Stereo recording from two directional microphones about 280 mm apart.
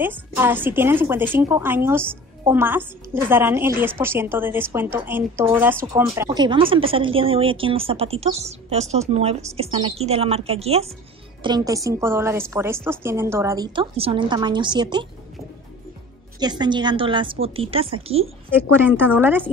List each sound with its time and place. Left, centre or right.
0.0 s a woman's voice: centre
16.3 s speech: centre
18.7 s a woman's voice: centre